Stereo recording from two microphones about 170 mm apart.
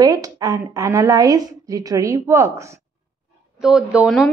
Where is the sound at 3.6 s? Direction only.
Centre (ahead or behind).